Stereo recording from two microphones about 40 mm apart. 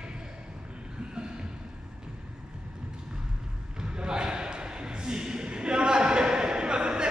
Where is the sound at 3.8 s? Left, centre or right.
Right.